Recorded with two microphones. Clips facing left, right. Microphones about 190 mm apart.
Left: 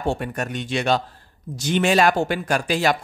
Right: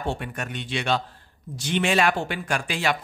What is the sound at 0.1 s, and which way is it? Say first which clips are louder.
Speech: left 5 dB; 40° left (ahead or behind).